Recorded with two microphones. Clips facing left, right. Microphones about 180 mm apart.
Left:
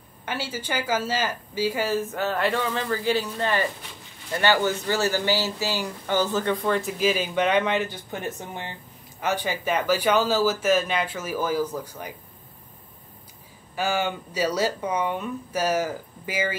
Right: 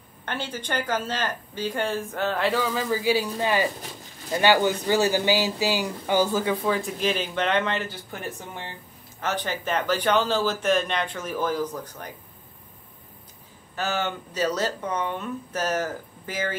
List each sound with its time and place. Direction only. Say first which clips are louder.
0.2 s speech: left 1 dB; 5° left (ahead or behind)
13.7 s speech: left 2 dB; 10° left (ahead or behind)